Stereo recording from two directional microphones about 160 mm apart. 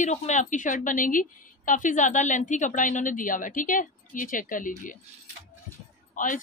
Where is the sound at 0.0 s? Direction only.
50° left (ahead or behind).